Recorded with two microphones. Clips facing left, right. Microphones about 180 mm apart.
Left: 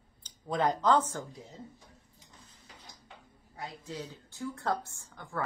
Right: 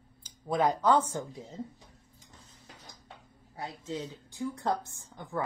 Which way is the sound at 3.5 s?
25° right (ahead or behind).